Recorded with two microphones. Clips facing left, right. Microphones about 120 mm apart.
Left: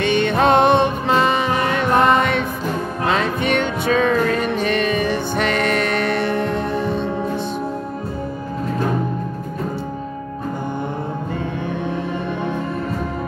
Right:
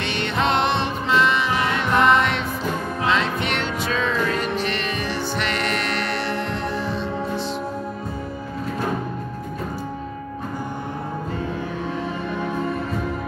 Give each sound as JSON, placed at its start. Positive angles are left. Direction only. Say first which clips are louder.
{"t": 0.3, "sound": "music", "louder": "left 6 dB", "side_deg": 50}
{"t": 3.8, "sound": "music", "louder": "left 6 dB", "side_deg": 55}